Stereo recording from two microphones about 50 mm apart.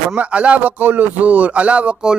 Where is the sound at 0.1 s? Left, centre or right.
Right.